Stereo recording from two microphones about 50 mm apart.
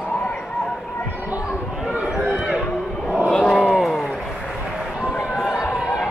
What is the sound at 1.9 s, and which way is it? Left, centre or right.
Run, right.